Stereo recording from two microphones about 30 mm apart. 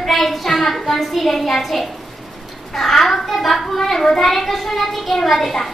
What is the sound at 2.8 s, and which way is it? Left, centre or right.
A child's voice, centre.